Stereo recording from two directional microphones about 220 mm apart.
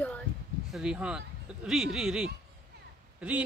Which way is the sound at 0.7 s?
5° right (ahead or behind).